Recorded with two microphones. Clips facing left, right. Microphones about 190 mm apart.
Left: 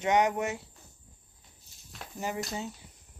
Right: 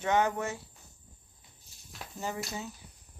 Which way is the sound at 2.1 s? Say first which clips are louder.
Left 2 dB; 15° left (ahead or behind).